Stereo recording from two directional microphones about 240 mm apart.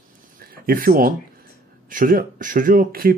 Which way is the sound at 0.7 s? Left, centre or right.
Right.